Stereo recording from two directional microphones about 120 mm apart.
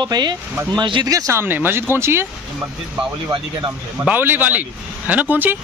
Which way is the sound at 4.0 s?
15° right (ahead or behind).